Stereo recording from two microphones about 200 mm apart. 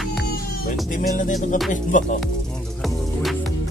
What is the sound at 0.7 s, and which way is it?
Music, 40° left (ahead or behind).